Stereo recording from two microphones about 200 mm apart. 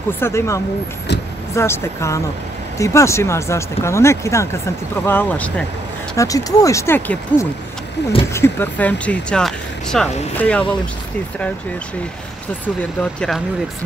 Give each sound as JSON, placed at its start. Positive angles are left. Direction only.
{"t": 0.2, "sound": "speech", "side_deg": 15}
{"t": 13.0, "sound": "speech", "side_deg": 5}